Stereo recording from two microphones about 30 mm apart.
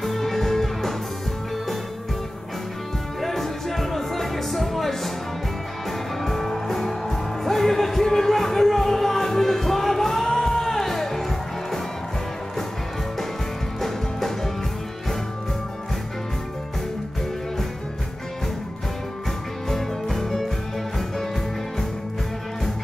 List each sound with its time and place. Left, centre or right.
0.0 s music: centre
3.2 s music: centre
13.7 s music: centre
19.7 s music: centre